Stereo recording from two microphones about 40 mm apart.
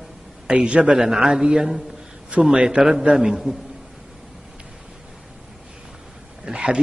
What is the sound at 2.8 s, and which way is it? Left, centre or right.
Speech, centre.